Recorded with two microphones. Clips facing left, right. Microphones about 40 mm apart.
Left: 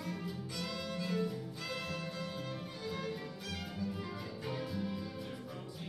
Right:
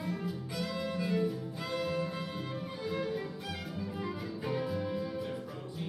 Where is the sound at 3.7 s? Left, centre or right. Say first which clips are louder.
Right 3 dB; centre.